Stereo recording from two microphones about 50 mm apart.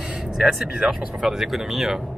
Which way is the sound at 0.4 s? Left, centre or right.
Centre.